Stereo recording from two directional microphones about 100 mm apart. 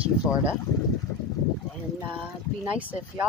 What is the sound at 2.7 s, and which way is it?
Speech, 15° right (ahead or behind).